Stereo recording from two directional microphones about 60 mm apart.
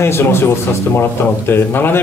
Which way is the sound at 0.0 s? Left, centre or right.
Left.